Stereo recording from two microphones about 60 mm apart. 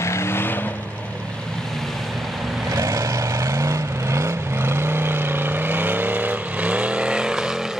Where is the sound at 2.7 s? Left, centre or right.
Right; by 7.6 s centre.